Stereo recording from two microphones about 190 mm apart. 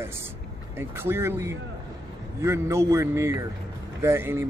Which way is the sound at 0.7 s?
10° right (ahead or behind).